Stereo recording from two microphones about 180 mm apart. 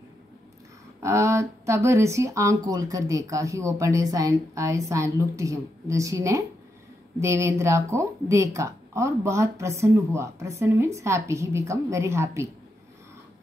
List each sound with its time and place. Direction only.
1.0 s speech: 15° right (ahead or behind)